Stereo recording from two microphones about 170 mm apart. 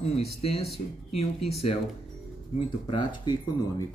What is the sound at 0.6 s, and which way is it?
Speech, centre (ahead or behind).